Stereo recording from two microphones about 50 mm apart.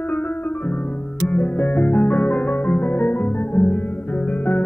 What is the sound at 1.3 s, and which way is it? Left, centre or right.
Music, left.